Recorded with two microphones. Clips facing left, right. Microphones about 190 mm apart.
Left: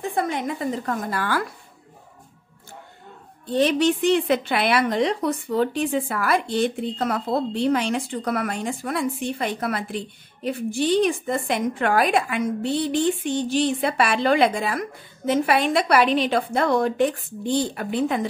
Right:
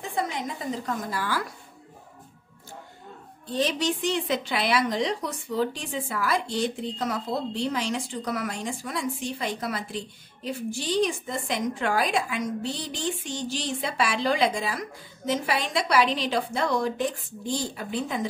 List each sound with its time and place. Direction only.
0.1 s a woman's voice: 60° left (ahead or behind)
3.5 s a woman's voice: 60° left (ahead or behind)